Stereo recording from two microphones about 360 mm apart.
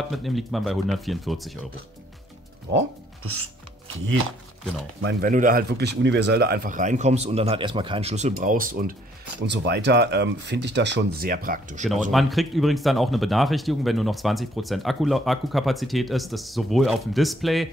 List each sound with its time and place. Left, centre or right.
0.1 s speech: centre
5.0 s speech: right
12.1 s speech: centre